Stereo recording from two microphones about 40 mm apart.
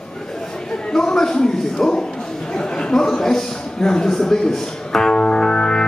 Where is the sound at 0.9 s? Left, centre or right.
Centre.